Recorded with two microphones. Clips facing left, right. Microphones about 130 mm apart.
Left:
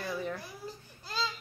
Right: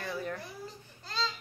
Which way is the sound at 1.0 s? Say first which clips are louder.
Even; 10° left (ahead or behind).